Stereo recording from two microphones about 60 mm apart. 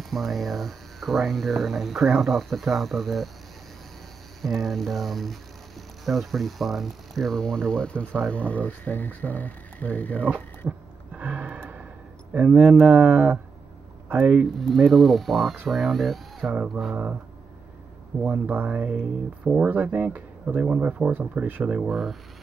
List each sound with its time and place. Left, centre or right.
0.0 s speech: centre
4.4 s speech: centre; by 10.2 s left
10.6 s speech: right
11.1 s a sound: right
12.4 s speech: right
14.8 s speech: centre
16.9 s speech: right
18.2 s speech: right
21.8 s speech: centre